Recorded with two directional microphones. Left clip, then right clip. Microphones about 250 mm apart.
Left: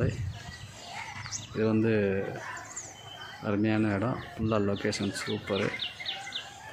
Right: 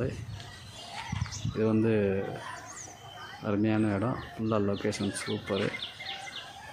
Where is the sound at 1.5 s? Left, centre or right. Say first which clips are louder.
Even; centre.